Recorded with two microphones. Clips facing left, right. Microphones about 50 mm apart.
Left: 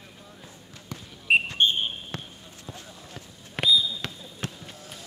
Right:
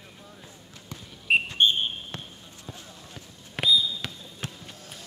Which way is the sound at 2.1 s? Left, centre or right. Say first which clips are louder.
Left 2 dB; left.